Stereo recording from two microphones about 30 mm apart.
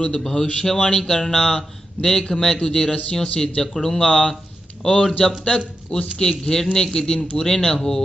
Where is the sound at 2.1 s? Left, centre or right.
Left.